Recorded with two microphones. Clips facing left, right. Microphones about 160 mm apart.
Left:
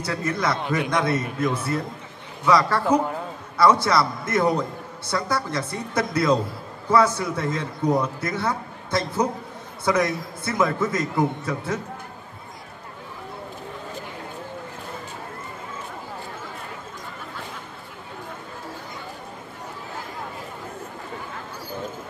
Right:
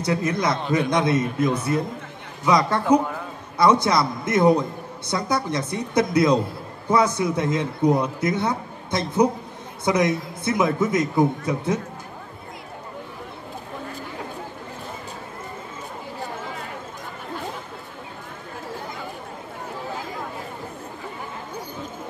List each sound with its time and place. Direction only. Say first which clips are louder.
0.0 s a man's voice: right 3 dB; 20° right (ahead or behind)